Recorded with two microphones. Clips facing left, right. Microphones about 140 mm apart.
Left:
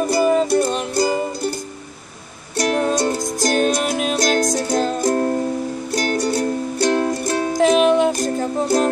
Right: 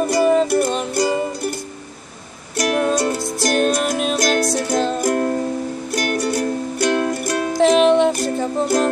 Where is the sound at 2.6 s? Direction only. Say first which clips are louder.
Even; 30° left (ahead or behind).